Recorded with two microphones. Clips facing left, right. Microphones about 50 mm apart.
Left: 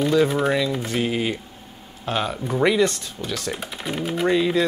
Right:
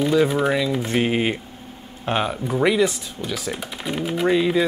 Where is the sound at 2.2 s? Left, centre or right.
Centre.